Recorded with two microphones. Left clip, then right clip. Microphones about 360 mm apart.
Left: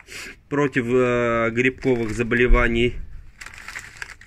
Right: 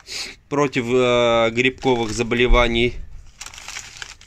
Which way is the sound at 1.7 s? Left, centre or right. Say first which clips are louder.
Right 2 dB; right.